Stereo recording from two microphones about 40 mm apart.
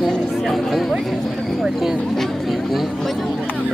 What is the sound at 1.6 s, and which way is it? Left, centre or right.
Speech, centre.